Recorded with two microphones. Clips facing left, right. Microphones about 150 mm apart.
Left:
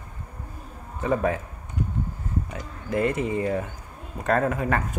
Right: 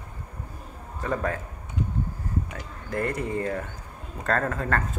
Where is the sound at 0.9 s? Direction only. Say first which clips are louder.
Left 4 dB; 20° left (ahead or behind).